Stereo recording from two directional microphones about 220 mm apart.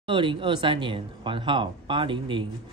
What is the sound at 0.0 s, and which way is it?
Speech, 20° right (ahead or behind).